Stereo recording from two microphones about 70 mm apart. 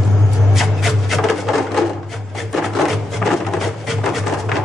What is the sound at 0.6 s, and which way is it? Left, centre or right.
Music, centre.